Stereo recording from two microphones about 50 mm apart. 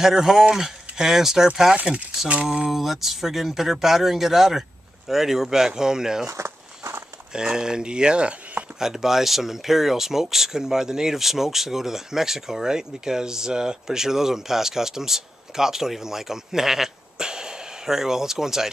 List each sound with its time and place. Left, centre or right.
0.0 s speech: centre
2.7 s speech: centre
6.2 s a sound: right
7.3 s speech: centre
8.7 s speech: centre